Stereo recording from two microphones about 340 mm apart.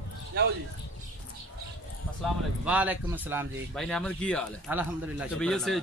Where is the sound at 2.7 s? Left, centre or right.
Centre.